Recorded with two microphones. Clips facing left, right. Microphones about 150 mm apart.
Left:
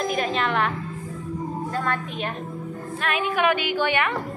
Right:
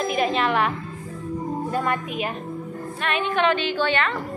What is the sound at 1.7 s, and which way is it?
Speech, 15° right (ahead or behind).